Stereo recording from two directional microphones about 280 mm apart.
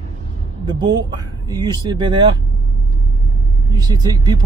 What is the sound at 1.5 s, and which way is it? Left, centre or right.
Speech, centre.